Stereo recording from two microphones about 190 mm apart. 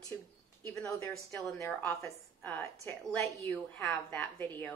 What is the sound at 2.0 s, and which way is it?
A woman's voice, 15° left (ahead or behind).